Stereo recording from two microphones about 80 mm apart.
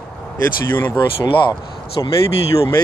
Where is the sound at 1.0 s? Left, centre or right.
Left.